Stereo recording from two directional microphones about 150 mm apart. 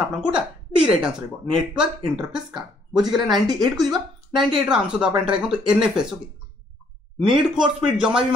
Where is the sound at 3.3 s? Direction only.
25° right (ahead or behind).